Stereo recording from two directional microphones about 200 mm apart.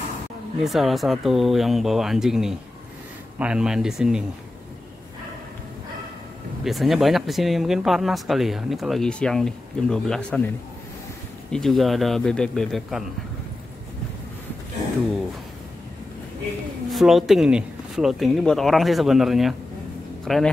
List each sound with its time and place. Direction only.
0.6 s speech: centre (ahead or behind)
6.6 s speech: centre (ahead or behind)
11.5 s speech: centre (ahead or behind)
16.9 s speech: centre (ahead or behind)